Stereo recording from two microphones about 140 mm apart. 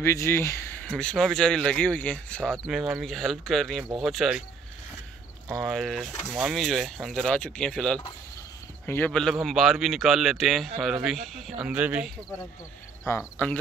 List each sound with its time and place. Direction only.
0.0 s speech: 20° left (ahead or behind); by 4.4 s centre (ahead or behind)
5.6 s speech: centre (ahead or behind)
13.1 s speech: 20° left (ahead or behind)